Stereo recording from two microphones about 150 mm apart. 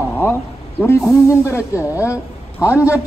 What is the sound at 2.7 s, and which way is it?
Speech, 10° right (ahead or behind).